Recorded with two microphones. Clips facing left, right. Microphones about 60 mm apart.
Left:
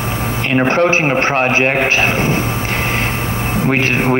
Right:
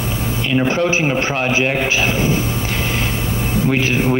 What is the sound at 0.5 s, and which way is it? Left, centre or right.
A man's voice, left.